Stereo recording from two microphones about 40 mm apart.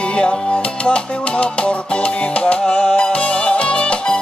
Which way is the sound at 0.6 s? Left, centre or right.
Left.